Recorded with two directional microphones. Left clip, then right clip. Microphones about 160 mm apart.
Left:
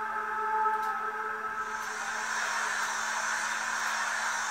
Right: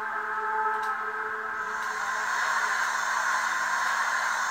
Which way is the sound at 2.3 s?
20° left (ahead or behind).